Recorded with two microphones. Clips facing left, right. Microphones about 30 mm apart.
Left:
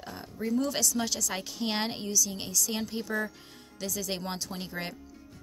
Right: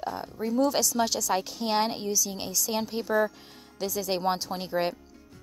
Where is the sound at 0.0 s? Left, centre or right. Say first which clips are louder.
Right 4 dB; centre.